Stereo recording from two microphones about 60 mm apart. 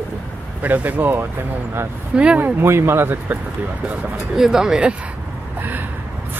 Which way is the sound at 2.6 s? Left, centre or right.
Right.